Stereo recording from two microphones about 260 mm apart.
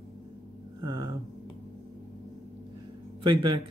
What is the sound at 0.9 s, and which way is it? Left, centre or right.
Speech, centre.